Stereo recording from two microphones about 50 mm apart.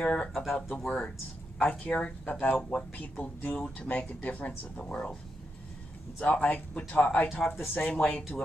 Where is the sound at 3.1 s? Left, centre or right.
Left.